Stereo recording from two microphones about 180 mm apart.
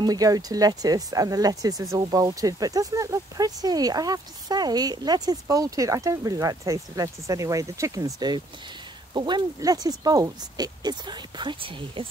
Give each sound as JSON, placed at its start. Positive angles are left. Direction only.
{"t": 0.0, "sound": "speech", "side_deg": -20}